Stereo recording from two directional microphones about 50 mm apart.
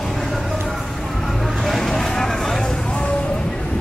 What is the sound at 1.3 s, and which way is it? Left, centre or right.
Vehicle, centre.